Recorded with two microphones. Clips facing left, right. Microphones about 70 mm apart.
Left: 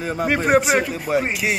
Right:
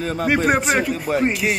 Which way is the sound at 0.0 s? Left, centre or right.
Centre.